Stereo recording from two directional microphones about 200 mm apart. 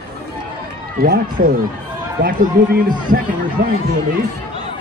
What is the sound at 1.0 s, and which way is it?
Speech, 45° right (ahead or behind).